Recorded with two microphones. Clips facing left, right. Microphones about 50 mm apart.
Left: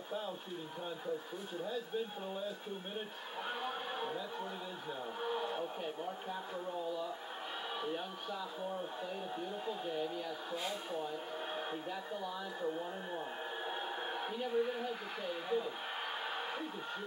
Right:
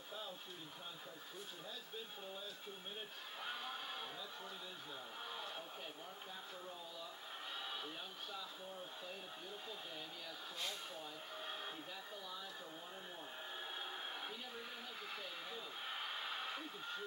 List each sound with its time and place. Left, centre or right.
3.4 s music: left
5.2 s a sound: left
7.8 s speech: left
9.7 s speech: left
13.7 s a woman's voice: left
16.3 s a sound: left